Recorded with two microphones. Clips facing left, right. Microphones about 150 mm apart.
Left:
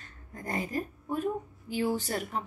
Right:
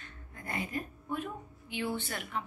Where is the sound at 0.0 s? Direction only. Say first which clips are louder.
Left 5 dB; 40° left (ahead or behind).